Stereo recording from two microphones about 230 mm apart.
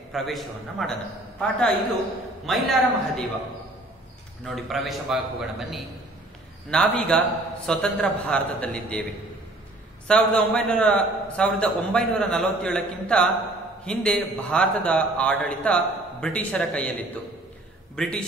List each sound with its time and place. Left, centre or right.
0.1 s a man's voice: centre
2.4 s a man's voice: centre
4.5 s a man's voice: centre
10.0 s a man's voice: centre